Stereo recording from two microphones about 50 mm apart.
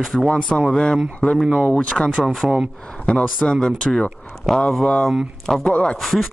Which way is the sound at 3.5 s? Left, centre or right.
Centre.